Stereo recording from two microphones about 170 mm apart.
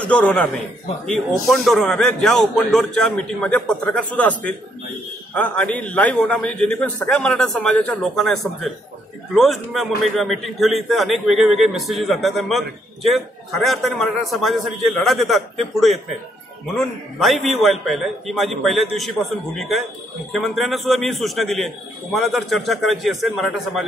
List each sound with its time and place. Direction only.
0.0 s a man's voice: 5° left (ahead or behind)